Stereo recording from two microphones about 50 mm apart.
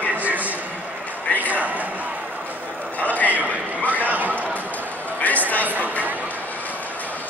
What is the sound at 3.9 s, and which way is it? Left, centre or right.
Chatter, right.